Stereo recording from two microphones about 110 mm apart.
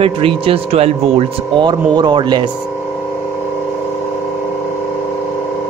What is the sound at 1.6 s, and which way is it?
Speech, 45° right (ahead or behind).